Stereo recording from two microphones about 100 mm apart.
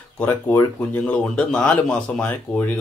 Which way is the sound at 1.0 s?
10° left (ahead or behind).